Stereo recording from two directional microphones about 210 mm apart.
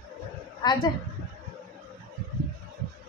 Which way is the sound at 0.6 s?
20° left (ahead or behind).